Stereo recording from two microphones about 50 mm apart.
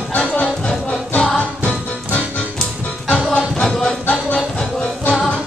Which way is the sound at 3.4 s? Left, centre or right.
Centre.